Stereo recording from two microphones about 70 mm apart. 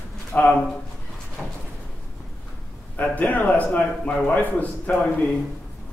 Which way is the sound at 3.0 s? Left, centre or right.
Left.